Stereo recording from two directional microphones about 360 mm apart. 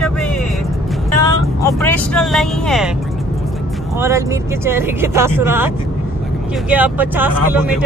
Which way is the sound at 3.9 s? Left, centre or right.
Centre.